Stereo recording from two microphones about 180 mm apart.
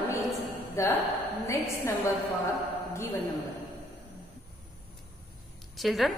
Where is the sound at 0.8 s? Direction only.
15° left (ahead or behind).